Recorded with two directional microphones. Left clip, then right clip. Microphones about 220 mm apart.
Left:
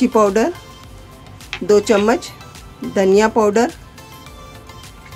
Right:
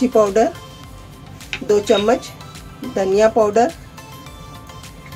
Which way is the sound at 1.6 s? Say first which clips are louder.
Left 1 dB; 35° left (ahead or behind).